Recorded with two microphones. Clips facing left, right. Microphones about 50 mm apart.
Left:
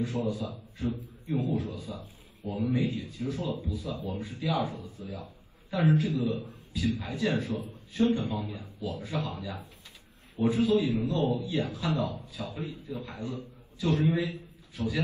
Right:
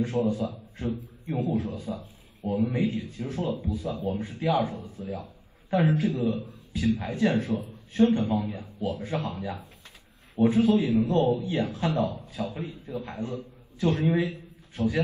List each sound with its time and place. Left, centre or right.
0.0 s a man's voice: right
2.4 s a man's voice: right
2.7 s a man's voice: right
14.1 s a sound: right